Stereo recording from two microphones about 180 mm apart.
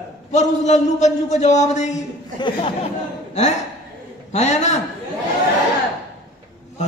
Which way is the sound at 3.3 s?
40° left (ahead or behind).